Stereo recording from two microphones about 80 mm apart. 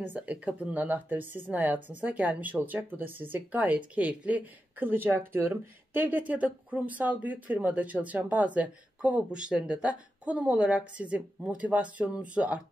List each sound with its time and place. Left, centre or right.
0.0 s speech: right